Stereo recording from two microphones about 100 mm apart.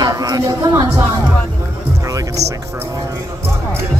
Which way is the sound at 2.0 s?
35° right (ahead or behind).